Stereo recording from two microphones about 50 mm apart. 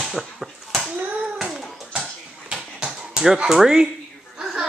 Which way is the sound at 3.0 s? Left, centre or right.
Centre.